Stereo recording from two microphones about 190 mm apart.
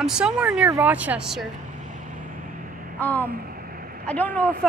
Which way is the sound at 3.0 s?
10° left (ahead or behind).